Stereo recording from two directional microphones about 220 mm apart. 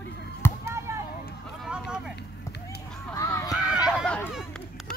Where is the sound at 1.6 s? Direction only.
5° right (ahead or behind).